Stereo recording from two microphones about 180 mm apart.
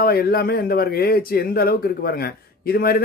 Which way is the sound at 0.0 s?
55° left (ahead or behind).